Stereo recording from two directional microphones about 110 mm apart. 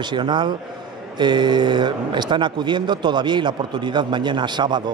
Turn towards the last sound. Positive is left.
turn(degrees=-40)  # may be behind; listen again after turning